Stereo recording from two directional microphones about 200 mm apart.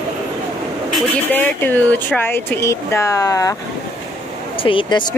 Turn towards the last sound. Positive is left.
turn(degrees=25)  # may be behind; listen again after turning